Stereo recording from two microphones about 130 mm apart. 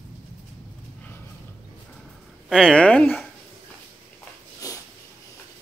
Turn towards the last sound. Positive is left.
turn(degrees=25)  # may be behind; listen again after turning